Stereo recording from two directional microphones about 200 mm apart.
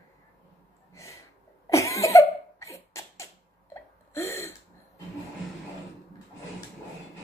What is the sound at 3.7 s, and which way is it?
Hiccup, 15° left (ahead or behind).